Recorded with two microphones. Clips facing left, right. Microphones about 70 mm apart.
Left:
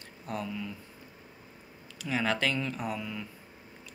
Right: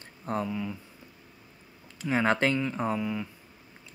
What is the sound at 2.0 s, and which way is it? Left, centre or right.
Speech, right.